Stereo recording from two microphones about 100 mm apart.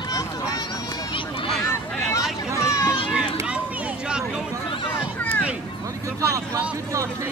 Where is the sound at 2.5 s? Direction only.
30° left (ahead or behind).